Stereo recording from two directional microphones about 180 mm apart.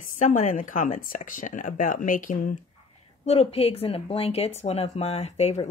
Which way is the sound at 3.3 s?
35° left (ahead or behind).